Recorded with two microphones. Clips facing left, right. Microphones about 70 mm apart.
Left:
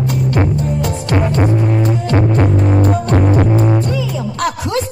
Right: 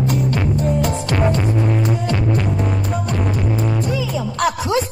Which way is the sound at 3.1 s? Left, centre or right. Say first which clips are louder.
Left 8 dB; left.